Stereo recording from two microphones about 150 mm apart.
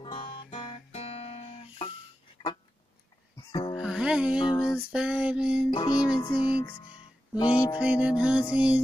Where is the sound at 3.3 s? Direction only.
30° left (ahead or behind).